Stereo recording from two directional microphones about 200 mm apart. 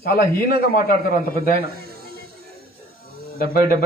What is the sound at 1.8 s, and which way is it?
Snake, 50° right (ahead or behind).